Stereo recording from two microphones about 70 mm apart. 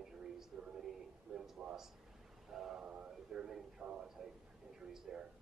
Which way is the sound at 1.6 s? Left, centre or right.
Centre.